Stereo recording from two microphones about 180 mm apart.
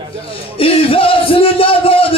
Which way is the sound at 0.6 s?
30° left (ahead or behind).